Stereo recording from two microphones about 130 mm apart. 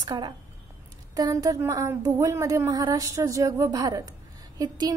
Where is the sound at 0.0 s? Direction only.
30° right (ahead or behind).